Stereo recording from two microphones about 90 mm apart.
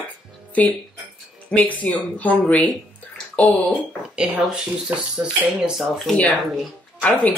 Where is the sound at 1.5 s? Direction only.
15° left (ahead or behind).